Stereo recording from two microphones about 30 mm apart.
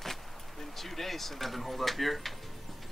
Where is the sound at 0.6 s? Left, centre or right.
Centre.